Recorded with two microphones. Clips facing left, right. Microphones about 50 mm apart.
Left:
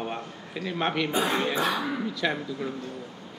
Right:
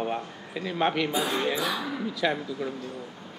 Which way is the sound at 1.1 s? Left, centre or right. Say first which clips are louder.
Left 1 dB; left.